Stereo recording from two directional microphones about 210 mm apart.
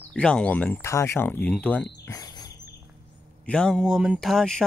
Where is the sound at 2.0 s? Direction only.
20° left (ahead or behind).